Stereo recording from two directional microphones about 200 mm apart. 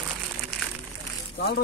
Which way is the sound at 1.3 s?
50° left (ahead or behind).